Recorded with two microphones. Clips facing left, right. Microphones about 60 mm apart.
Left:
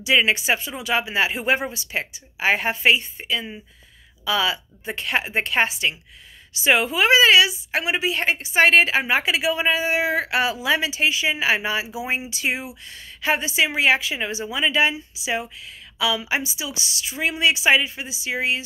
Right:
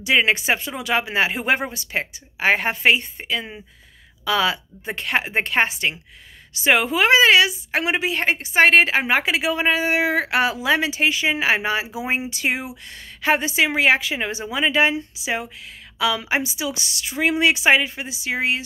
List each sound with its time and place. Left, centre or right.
0.0 s a woman's voice: right